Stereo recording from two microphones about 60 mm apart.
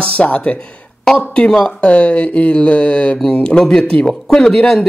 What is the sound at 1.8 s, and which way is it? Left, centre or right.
Speech, centre.